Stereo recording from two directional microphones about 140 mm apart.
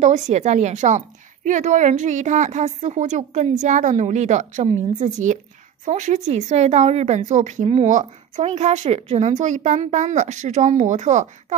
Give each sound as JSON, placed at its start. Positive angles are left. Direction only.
{"t": 0.0, "sound": "a woman's voice", "side_deg": -55}
{"t": 7.6, "sound": "speech", "side_deg": -45}
{"t": 7.9, "sound": "a woman's voice", "side_deg": -60}